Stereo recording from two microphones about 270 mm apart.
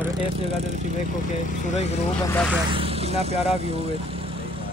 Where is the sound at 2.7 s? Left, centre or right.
Right.